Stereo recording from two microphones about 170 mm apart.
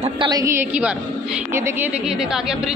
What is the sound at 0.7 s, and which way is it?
A woman's voice, 10° right (ahead or behind).